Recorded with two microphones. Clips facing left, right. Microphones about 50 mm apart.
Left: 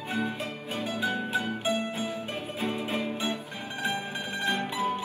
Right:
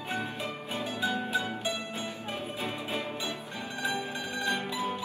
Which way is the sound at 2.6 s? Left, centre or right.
Left.